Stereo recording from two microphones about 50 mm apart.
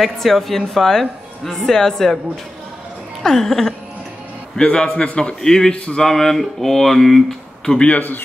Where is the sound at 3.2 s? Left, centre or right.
Centre.